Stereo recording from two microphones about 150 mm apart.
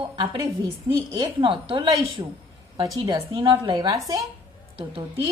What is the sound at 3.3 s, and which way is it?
Speech, 35° right (ahead or behind).